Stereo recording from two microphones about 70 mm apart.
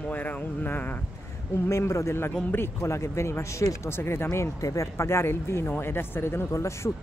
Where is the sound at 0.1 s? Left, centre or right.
Left.